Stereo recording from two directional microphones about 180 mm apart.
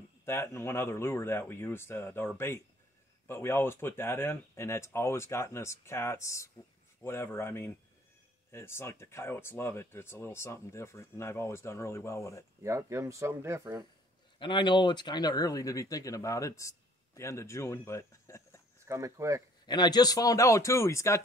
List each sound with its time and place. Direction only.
0.2 s speech: 15° left (ahead or behind)
12.6 s speech: 15° right (ahead or behind)
14.4 s speech: 25° left (ahead or behind)
18.9 s speech: 15° right (ahead or behind)
19.6 s speech: 25° left (ahead or behind)